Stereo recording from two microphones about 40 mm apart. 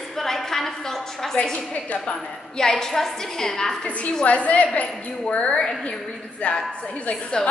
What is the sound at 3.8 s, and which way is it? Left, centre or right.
A woman's voice, left.